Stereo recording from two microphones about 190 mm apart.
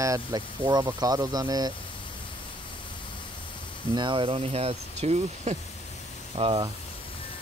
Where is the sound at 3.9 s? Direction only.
25° right (ahead or behind).